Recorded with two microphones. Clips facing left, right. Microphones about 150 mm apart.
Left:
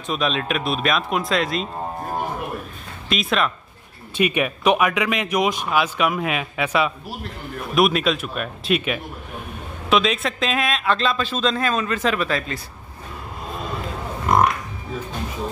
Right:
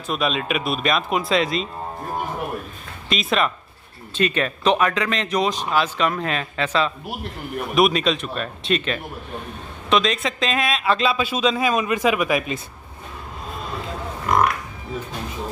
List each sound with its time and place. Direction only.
0.0 s speech: centre (ahead or behind)
3.1 s speech: centre (ahead or behind)
4.2 s a man's voice: 10° left (ahead or behind); by 12.5 s 15° right (ahead or behind)